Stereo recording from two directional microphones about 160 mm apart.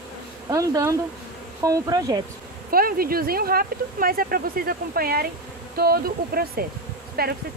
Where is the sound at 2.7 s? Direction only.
65° right (ahead or behind).